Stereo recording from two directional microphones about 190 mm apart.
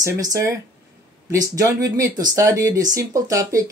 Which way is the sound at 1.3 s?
20° right (ahead or behind).